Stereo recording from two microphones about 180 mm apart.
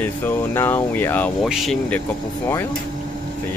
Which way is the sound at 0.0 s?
10° left (ahead or behind).